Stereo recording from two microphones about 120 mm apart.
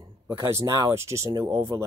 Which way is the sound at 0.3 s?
20° right (ahead or behind).